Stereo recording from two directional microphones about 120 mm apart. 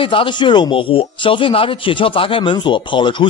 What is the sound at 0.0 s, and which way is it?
Speech, 45° left (ahead or behind).